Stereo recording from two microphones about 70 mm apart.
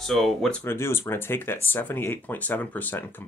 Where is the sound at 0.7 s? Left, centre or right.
Left.